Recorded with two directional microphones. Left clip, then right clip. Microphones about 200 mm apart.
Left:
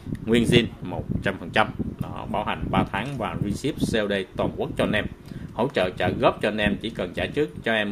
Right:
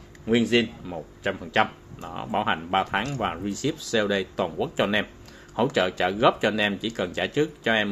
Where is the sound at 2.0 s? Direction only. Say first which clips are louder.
Right 2 dB; 10° right (ahead or behind).